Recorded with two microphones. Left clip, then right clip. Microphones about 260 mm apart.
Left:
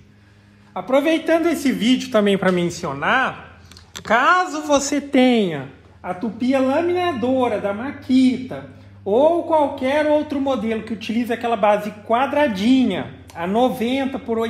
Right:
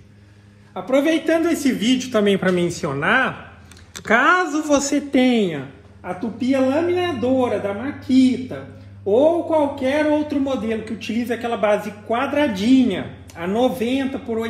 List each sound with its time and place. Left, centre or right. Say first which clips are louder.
0.7 s a man's voice: left 1 dB; left
4.7 s a man's voice: left 2 dB; left
6.0 s a man's voice: even; left